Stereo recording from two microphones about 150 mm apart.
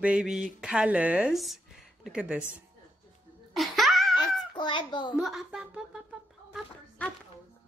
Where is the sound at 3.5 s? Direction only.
Centre (ahead or behind).